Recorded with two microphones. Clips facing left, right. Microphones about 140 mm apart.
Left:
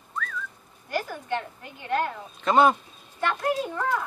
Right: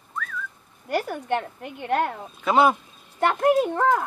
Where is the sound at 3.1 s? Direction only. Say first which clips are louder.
Right 7 dB; 55° right (ahead or behind).